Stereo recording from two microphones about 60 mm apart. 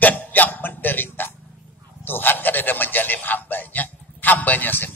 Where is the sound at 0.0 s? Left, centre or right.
Left.